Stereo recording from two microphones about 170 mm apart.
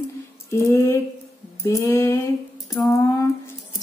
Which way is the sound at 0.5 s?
15° left (ahead or behind).